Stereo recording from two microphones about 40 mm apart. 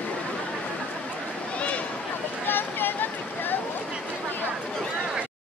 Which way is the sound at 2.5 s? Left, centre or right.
Left.